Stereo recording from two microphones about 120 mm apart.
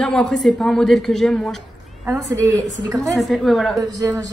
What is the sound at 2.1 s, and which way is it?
Speech, 25° right (ahead or behind).